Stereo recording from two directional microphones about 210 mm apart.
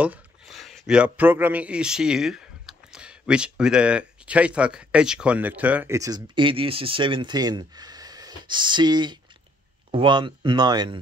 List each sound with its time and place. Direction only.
0.0 s speech: 5° right (ahead or behind); by 11.0 s 20° right (ahead or behind)